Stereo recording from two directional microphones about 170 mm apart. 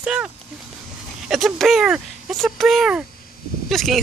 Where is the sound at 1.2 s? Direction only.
Centre (ahead or behind).